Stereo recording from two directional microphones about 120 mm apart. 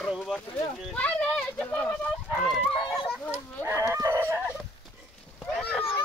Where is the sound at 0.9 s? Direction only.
10° left (ahead or behind).